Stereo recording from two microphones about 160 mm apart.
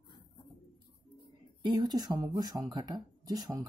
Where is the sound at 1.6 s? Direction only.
25° right (ahead or behind).